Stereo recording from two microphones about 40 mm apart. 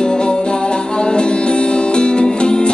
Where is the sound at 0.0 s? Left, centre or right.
Left.